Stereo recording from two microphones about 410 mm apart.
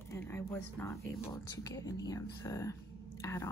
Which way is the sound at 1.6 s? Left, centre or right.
Centre.